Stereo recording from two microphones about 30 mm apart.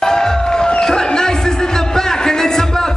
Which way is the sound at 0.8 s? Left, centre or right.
Left.